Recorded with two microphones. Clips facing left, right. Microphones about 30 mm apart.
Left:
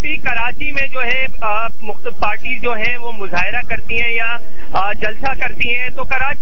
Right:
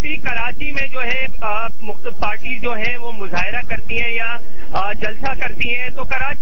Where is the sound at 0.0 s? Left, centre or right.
Centre.